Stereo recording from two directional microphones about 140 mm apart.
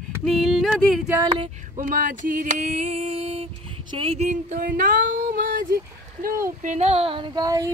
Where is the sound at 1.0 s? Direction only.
20° right (ahead or behind).